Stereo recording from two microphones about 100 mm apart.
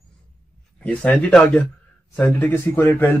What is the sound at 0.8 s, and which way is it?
Speech, 15° left (ahead or behind).